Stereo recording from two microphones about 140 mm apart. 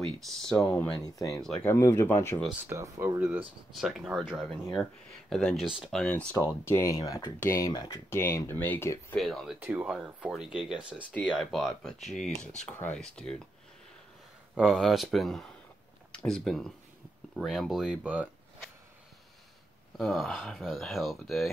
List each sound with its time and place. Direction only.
0.0 s speech: centre (ahead or behind)
1.0 s speech: 25° left (ahead or behind)
2.7 s speech: 20° right (ahead or behind)
3.7 s speech: centre (ahead or behind)
6.3 s speech: 20° left (ahead or behind)
9.1 s speech: centre (ahead or behind)
9.6 s speech: 10° right (ahead or behind); by 13.4 s 5° left (ahead or behind)
14.5 s speech: centre (ahead or behind)
20.0 s speech: 5° left (ahead or behind)